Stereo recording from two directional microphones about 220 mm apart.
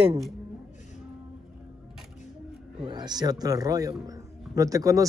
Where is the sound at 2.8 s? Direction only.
20° right (ahead or behind).